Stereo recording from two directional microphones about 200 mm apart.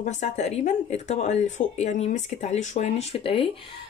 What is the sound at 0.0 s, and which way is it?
A woman's voice, 35° left (ahead or behind).